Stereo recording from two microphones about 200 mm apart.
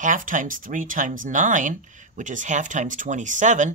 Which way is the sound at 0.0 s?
40° right (ahead or behind).